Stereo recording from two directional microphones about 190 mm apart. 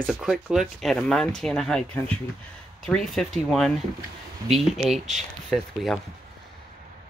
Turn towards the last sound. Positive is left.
turn(degrees=0)  # may be behind; listen again after turning